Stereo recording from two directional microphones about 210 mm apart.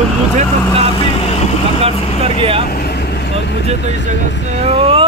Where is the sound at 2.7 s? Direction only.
50° left (ahead or behind).